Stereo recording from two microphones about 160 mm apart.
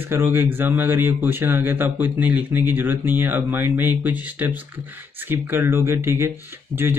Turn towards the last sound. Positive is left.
turn(degrees=-20)  # may be behind; listen again after turning